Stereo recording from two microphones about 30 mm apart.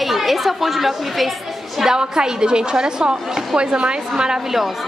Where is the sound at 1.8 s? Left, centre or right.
Right.